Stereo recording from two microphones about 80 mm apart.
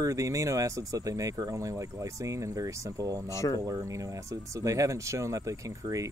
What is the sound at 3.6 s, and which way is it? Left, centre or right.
Speech, right.